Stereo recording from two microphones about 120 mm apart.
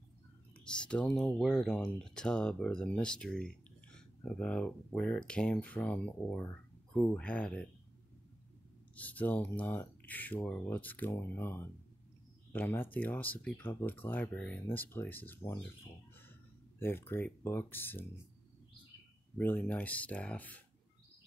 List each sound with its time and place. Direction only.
0.7 s speech: 10° left (ahead or behind)
8.9 s speech: 15° left (ahead or behind)
16.8 s speech: 20° left (ahead or behind)
19.3 s speech: 15° left (ahead or behind)